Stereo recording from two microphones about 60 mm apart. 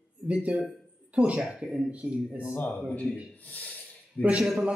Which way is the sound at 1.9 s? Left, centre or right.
Right.